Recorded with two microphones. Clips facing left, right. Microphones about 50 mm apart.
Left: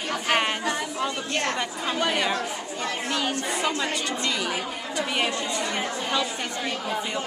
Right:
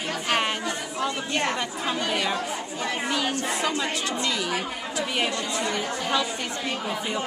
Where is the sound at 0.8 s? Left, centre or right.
Centre.